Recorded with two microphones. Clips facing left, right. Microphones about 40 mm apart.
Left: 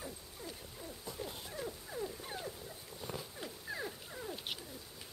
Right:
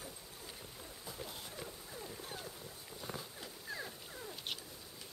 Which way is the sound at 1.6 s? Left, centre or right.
Centre.